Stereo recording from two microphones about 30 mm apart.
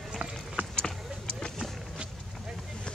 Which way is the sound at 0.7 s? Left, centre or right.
Left.